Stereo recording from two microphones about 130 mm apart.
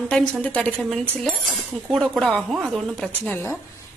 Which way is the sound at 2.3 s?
10° right (ahead or behind).